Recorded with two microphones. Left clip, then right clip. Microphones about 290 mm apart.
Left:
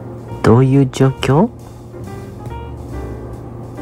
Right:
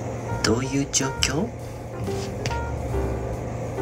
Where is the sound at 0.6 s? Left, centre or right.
Centre.